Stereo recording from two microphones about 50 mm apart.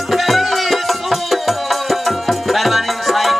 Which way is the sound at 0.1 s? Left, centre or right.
Centre.